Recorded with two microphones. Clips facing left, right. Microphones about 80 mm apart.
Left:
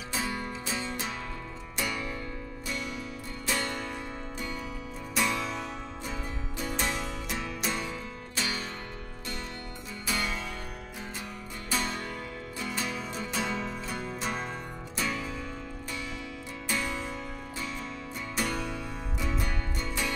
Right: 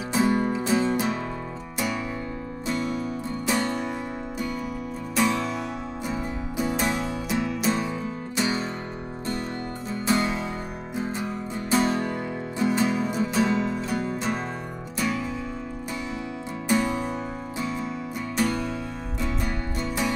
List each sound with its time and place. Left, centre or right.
0.1 s music: right
2.7 s music: right
3.4 s music: centre
5.1 s music: centre
8.4 s music: right
10.0 s music: right
11.7 s music: right; by 15.2 s centre
16.6 s music: right
18.3 s music: centre